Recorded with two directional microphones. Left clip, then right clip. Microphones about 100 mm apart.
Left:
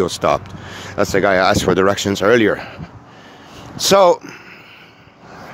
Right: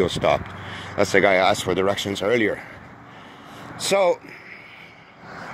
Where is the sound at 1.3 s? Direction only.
55° left (ahead or behind); by 2.7 s 90° left.